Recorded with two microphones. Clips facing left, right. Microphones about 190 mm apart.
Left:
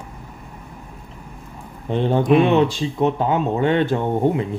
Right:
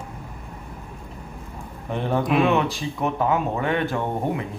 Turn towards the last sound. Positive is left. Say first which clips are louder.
# left 6 dB
turn(degrees=25)  # may be behind; listen again after turning